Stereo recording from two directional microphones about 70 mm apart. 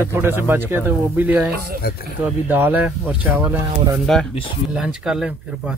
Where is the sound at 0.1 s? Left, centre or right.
Right.